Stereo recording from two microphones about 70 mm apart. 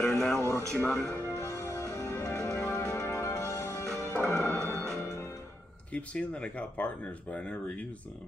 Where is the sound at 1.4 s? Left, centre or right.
Left.